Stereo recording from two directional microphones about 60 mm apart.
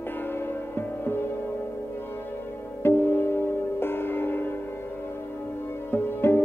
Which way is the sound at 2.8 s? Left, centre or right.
Left.